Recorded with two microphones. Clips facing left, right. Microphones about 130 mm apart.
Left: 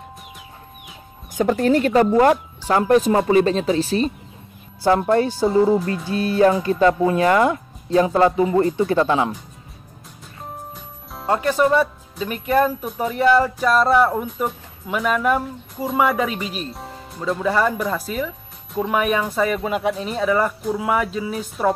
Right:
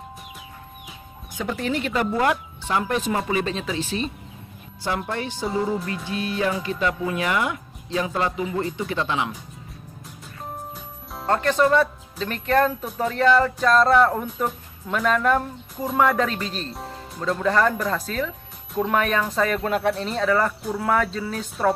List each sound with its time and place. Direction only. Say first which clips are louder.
1.3 s speech: left 9 dB; 45° left (ahead or behind)
11.1 s speech: left 1 dB; 10° left (ahead or behind)
16.7 s speech: even; centre (ahead or behind)